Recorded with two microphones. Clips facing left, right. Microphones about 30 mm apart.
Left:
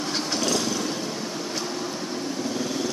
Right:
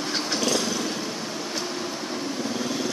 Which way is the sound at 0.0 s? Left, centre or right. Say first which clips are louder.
Even; centre.